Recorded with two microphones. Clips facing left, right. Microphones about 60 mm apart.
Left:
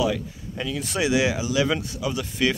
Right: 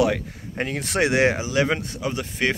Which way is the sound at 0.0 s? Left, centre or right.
Right.